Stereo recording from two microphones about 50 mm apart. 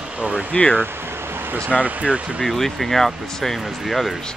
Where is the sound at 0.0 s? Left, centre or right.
Right.